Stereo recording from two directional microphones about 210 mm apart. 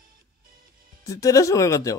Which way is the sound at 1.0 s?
15° left (ahead or behind).